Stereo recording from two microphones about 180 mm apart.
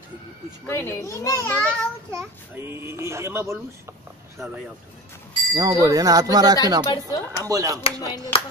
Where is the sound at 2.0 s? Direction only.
15° right (ahead or behind).